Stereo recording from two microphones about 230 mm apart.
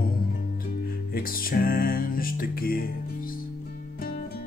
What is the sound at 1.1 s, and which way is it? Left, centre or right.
Music, left.